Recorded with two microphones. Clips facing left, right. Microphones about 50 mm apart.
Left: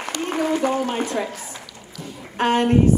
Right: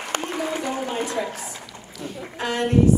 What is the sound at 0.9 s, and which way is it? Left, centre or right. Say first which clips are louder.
Speech: left 2 dB; left.